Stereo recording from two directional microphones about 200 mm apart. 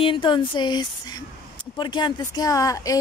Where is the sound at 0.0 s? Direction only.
25° left (ahead or behind).